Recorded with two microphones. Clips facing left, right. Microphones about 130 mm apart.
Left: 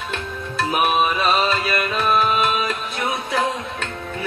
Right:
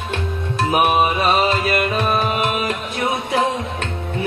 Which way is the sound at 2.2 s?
20° right (ahead or behind).